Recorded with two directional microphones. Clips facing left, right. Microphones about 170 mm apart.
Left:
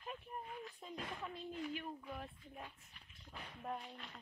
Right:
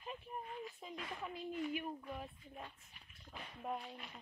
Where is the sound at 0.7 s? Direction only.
5° right (ahead or behind).